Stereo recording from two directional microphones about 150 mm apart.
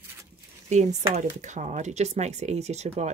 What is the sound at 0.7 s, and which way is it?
Speech, 50° right (ahead or behind).